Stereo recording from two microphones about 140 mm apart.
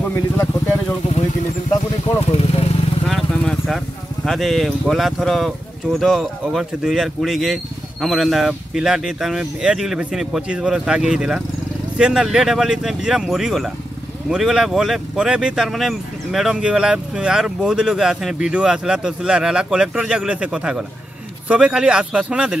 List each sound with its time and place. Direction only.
0.0 s speech: 15° left (ahead or behind)
2.3 s vehicle: 45° left (ahead or behind)
3.1 s vehicle: centre (ahead or behind)
4.3 s speech: centre (ahead or behind)